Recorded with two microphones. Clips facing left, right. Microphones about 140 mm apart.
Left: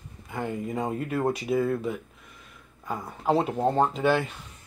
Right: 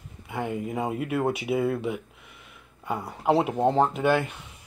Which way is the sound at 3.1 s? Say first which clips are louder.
Right 1 dB; 10° right (ahead or behind).